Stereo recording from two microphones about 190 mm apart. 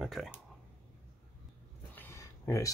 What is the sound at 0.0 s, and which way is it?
Speech, centre (ahead or behind).